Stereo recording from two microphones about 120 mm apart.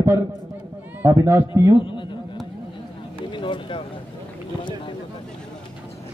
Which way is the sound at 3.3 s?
45° left (ahead or behind).